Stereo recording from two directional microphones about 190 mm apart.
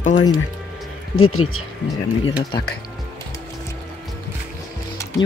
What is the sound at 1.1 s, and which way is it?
Speech, 90° left.